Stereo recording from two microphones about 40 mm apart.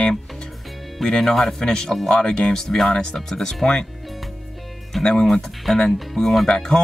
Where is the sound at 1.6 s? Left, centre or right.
Left.